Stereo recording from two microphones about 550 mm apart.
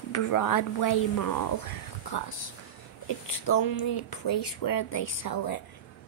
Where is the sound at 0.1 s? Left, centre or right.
Left.